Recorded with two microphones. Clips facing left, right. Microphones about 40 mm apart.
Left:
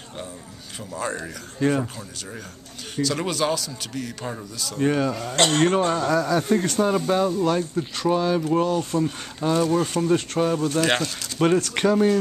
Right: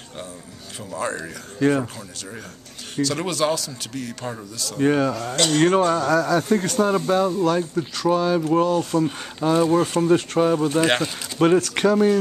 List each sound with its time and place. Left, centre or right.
0.9 s speech: centre
5.3 s speech: left
5.9 s speech: centre